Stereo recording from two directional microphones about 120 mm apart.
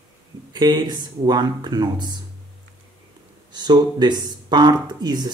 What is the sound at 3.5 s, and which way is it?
Speech, 35° right (ahead or behind).